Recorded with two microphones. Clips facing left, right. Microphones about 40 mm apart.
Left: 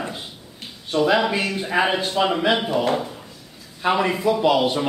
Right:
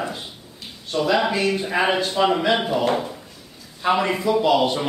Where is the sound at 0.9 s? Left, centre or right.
Centre.